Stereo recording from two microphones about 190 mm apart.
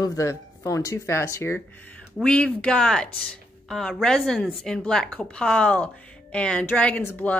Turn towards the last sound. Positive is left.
turn(degrees=10)  # may be behind; listen again after turning